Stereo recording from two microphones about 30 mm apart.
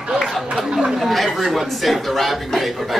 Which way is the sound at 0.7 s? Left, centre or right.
Centre.